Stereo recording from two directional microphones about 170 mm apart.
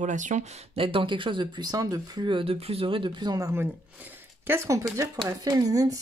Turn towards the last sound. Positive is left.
turn(degrees=-20)  # may be behind; listen again after turning